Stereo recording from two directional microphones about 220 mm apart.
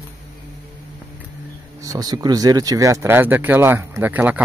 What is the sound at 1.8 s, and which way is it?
Speech, 15° right (ahead or behind).